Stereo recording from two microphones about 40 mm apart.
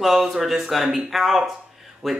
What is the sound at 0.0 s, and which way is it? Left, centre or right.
Speech, centre.